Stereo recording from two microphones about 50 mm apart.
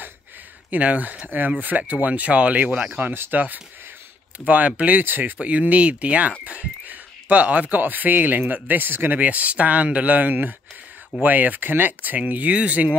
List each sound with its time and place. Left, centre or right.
0.7 s speech: right
5.4 s speech: right
9.2 s speech: right